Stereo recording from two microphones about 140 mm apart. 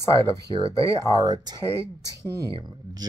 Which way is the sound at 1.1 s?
30° right (ahead or behind).